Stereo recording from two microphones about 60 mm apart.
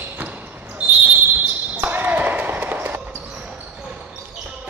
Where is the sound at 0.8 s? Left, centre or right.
Right.